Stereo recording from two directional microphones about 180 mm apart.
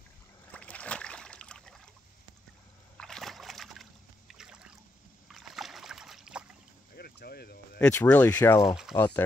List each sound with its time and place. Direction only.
0.5 s boat: 5° left (ahead or behind)
3.0 s splash: 5° left (ahead or behind)
4.3 s boat: 5° right (ahead or behind)
7.0 s a sound: 60° left (ahead or behind)
7.8 s speech: 10° left (ahead or behind)
8.4 s speech: 20° left (ahead or behind)